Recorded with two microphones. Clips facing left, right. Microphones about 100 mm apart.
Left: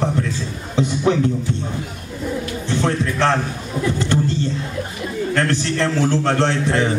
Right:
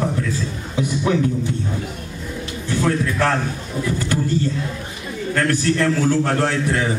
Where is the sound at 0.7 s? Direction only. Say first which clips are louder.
Left 2 dB; 30° left (ahead or behind).